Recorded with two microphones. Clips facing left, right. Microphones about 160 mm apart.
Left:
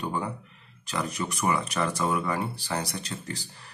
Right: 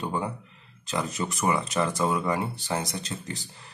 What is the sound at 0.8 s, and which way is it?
Speech, 25° right (ahead or behind).